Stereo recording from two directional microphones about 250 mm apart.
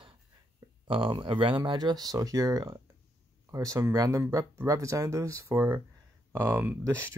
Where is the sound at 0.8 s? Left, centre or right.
Centre.